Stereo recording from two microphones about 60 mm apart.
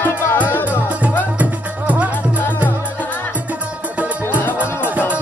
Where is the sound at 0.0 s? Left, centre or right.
Left.